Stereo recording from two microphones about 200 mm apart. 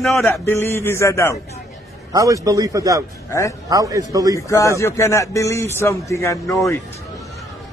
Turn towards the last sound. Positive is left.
turn(degrees=15)  # may be behind; listen again after turning